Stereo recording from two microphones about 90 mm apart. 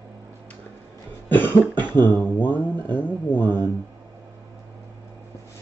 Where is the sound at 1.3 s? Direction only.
20° left (ahead or behind).